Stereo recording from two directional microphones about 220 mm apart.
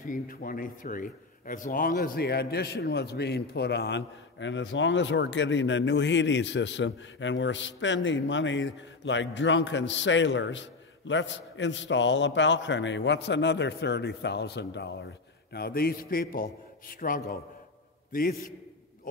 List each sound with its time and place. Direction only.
0.0 s a man's voice: 40° left (ahead or behind)